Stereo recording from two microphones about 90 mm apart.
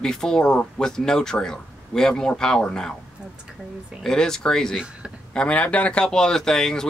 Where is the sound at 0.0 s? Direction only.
5° left (ahead or behind).